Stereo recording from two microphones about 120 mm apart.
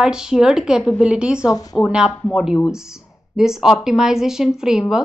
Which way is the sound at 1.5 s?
30° left (ahead or behind).